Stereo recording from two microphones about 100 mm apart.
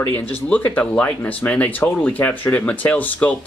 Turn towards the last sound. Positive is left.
turn(degrees=15)  # may be behind; listen again after turning